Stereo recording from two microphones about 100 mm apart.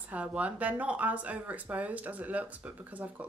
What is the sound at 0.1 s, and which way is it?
Speech, 15° right (ahead or behind).